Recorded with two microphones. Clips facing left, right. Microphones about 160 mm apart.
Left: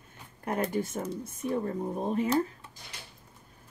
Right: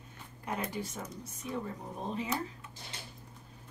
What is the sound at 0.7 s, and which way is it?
Speech, 50° left (ahead or behind).